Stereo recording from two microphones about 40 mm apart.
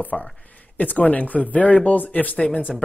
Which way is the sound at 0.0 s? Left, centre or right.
Left.